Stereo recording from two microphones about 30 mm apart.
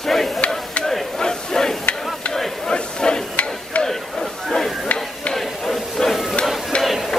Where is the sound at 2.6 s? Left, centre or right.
Left.